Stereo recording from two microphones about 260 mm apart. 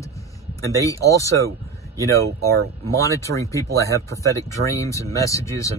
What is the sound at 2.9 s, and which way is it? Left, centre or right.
Speech, centre.